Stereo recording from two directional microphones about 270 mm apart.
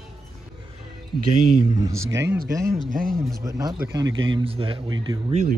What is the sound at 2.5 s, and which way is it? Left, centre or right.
Speech, centre.